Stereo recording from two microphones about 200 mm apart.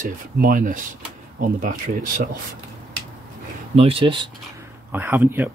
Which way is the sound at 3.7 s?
30° right (ahead or behind).